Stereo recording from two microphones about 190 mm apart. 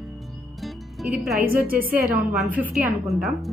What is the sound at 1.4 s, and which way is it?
Speech, 50° right (ahead or behind).